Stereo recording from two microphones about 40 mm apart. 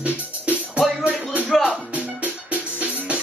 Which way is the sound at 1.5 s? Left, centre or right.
Centre.